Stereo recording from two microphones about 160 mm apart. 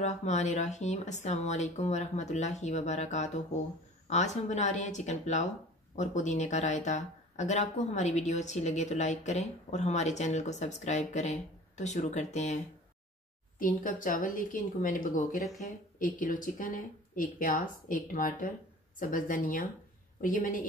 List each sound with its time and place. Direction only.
0.0 s speech: 45° left (ahead or behind)
13.6 s speech: 60° left (ahead or behind)